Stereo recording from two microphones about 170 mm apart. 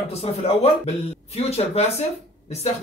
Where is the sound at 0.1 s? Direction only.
40° left (ahead or behind).